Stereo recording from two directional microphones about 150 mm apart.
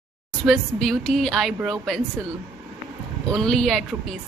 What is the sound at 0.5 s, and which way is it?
A woman's voice, centre (ahead or behind).